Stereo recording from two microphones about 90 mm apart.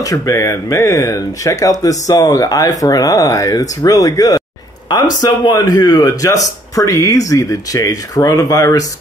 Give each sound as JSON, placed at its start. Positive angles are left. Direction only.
{"t": 0.0, "sound": "speech", "side_deg": 40}
{"t": 4.8, "sound": "speech", "side_deg": 50}